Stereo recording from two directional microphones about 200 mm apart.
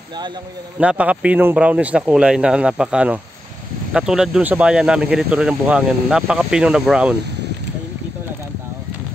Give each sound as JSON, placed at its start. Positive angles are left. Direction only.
{"t": 0.7, "sound": "speech", "side_deg": -5}